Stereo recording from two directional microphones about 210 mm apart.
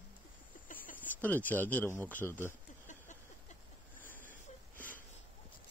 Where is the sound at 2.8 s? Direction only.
35° left (ahead or behind).